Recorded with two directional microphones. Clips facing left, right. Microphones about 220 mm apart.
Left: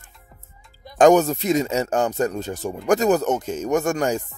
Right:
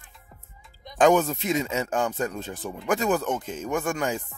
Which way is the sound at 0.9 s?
45° left (ahead or behind).